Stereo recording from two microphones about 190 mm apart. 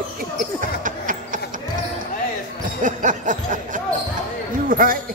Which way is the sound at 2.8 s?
40° right (ahead or behind).